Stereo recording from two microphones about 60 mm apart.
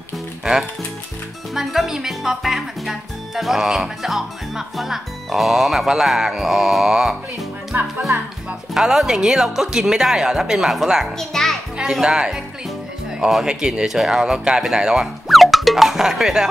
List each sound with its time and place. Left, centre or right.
0.4 s speech: centre
7.7 s music: right
8.7 s speech: centre
11.1 s a child's voice: centre
11.8 s speech: centre